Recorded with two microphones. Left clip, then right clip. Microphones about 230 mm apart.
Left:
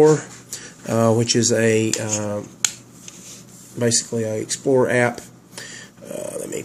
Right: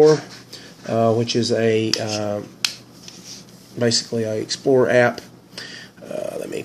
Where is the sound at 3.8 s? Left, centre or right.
Centre.